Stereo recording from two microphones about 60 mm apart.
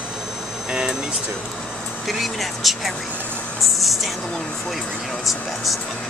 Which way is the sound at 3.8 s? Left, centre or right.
Centre.